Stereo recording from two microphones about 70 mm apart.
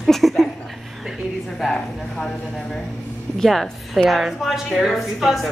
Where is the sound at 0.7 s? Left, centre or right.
Centre.